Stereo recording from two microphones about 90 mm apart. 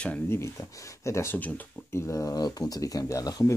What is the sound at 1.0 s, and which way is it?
Speech, 30° left (ahead or behind).